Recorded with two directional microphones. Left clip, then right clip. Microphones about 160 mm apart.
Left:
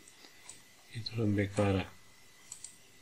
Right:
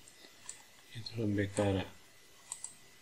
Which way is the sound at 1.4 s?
25° left (ahead or behind).